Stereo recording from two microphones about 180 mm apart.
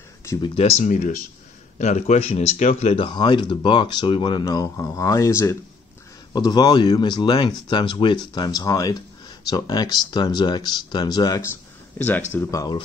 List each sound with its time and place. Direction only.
0.6 s speech: 35° left (ahead or behind); by 12.8 s 20° left (ahead or behind)